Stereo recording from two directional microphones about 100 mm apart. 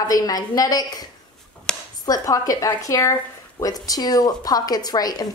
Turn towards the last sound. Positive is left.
turn(degrees=40)  # may be behind; listen again after turning